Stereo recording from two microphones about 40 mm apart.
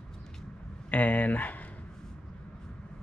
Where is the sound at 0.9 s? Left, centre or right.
Left.